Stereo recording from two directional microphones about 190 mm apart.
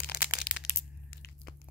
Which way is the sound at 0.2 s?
5° right (ahead or behind).